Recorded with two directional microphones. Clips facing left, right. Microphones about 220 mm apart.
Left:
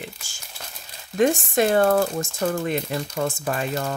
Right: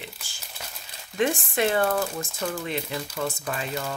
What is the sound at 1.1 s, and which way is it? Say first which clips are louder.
Speech: left 5 dB; 45° left (ahead or behind).